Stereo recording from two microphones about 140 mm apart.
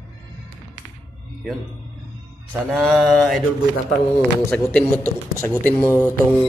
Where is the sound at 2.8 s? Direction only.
Centre (ahead or behind).